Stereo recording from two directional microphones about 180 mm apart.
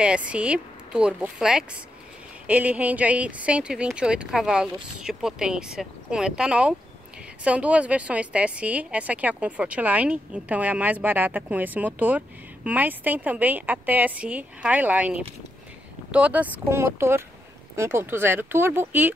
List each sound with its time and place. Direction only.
0.0 s a woman's voice: 5° right (ahead or behind)